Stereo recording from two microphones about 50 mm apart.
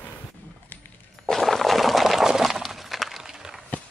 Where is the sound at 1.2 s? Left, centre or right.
Centre.